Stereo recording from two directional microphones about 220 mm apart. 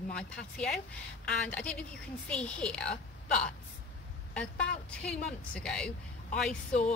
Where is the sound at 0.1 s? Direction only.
5° left (ahead or behind).